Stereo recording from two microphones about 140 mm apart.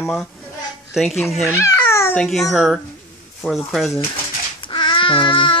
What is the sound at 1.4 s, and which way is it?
Babbling, 20° left (ahead or behind).